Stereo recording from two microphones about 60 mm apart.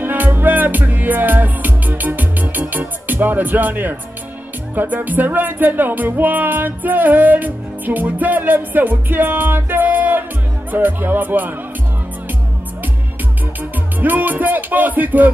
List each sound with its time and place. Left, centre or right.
0.0 s music: right
13.9 s music: right